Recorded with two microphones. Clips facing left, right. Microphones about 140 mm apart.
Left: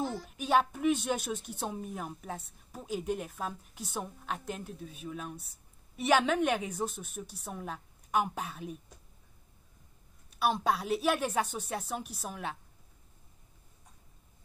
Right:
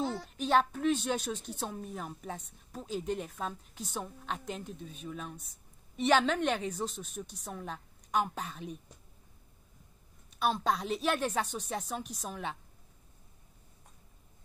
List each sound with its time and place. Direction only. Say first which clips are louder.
0.4 s a woman's voice: even; 10° left (ahead or behind)
10.4 s a woman's voice: left 1 dB; 10° left (ahead or behind)